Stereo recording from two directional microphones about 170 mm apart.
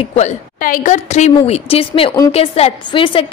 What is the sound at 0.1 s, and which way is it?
A woman's voice, 45° left (ahead or behind).